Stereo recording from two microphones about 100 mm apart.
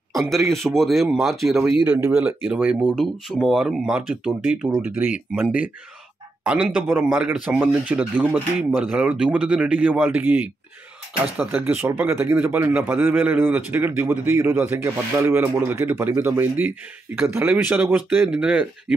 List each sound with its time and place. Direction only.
0.1 s a man's voice: centre (ahead or behind)
2.0 s speech: 20° right (ahead or behind)
4.8 s speech: 20° right (ahead or behind)